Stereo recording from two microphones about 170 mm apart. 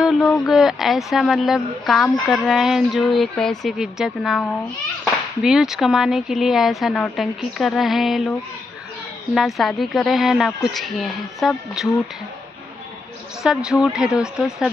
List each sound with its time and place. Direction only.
0.0 s speech: centre (ahead or behind)
5.4 s speech: centre (ahead or behind)
13.4 s speech: 5° right (ahead or behind)